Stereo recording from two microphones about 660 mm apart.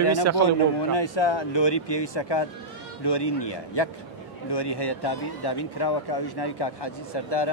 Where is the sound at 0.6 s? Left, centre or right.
Left.